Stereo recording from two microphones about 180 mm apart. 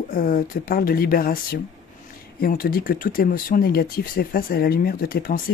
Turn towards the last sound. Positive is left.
turn(degrees=50)  # may be behind; listen again after turning